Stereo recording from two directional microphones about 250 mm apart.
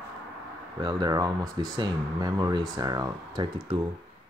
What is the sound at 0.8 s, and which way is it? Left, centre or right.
Speech, centre.